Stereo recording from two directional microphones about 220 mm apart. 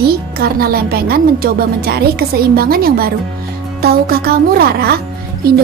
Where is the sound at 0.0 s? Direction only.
45° right (ahead or behind).